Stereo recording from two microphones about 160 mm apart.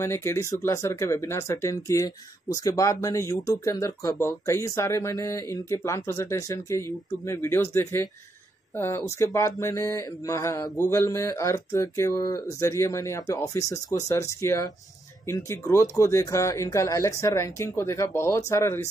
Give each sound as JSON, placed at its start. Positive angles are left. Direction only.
{"t": 0.0, "sound": "speech", "side_deg": 15}